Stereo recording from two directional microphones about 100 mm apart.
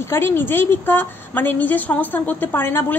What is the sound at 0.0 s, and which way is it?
A woman's voice, 25° left (ahead or behind).